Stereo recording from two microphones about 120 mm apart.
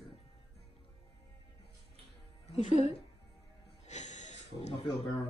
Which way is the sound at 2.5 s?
70° left (ahead or behind).